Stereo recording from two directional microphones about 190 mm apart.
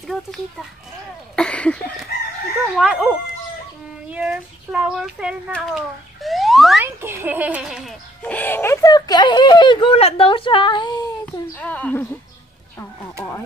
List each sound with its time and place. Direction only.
0.0 s a sound: centre (ahead or behind)
2.8 s speech: 5° right (ahead or behind)
6.8 s a child's voice: 10° right (ahead or behind); by 11.6 s 20° left (ahead or behind)
11.6 s speech: 10° left (ahead or behind)